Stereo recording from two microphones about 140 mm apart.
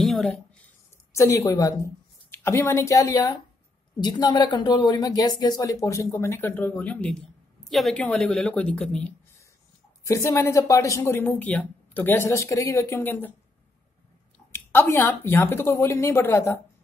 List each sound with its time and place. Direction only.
0.0 s a sound: centre (ahead or behind)
1.1 s a woman's voice: 20° left (ahead or behind)
10.0 s speech: 20° left (ahead or behind)
14.5 s speech: 15° left (ahead or behind)